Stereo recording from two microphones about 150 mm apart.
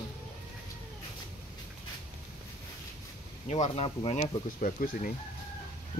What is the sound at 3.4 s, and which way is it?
Speech, 50° left (ahead or behind).